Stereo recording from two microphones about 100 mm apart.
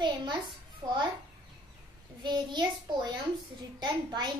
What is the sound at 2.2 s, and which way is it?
A child's voice, 50° right (ahead or behind).